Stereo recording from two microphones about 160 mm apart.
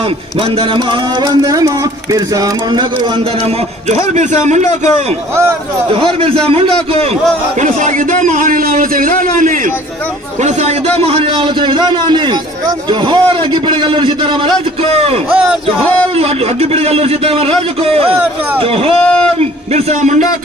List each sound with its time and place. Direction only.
0.6 s a man's voice: 30° right (ahead or behind)
4.1 s a man's voice: 50° right (ahead or behind)
6.4 s a man's voice: 35° right (ahead or behind)
7.6 s a man's voice: 50° right (ahead or behind)
11.1 s a man's voice: 35° right (ahead or behind)
16.7 s a man's voice: 40° right (ahead or behind)
18.9 s speech: 5° left (ahead or behind)
19.7 s a man's voice: 45° right (ahead or behind)